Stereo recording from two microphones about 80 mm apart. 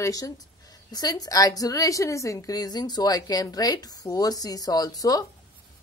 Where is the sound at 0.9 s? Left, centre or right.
Left.